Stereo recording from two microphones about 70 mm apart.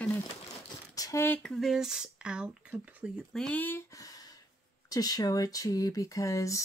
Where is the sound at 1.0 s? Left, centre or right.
Left.